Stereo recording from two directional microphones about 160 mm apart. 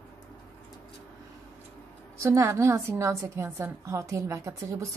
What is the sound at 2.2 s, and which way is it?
A woman's voice, 20° right (ahead or behind).